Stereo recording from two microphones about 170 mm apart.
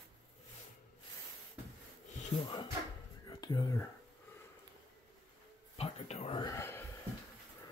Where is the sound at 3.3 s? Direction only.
25° left (ahead or behind).